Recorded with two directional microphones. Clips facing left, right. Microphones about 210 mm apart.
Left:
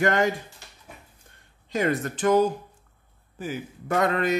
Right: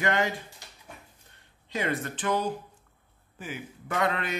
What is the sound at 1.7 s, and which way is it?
A man's voice, 45° left (ahead or behind).